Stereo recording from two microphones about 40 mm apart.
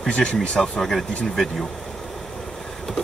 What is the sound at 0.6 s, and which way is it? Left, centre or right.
Speech, centre.